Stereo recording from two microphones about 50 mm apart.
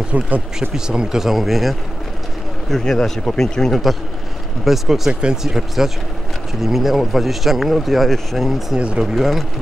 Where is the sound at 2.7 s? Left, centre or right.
Centre.